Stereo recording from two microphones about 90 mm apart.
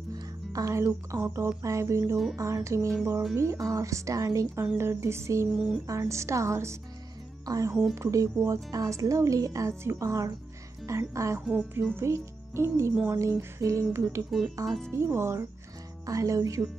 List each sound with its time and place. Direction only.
0.1 s a woman's voice: 40° right (ahead or behind)
11.5 s speech: 15° right (ahead or behind)
12.0 s a child's voice: 30° right (ahead or behind)
16.1 s a woman's voice: 40° right (ahead or behind)